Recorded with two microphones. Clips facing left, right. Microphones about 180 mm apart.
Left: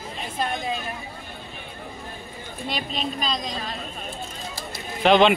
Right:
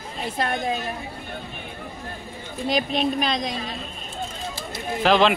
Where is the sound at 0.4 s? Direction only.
65° right (ahead or behind).